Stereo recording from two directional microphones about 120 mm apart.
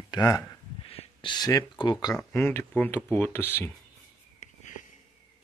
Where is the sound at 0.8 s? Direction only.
55° left (ahead or behind).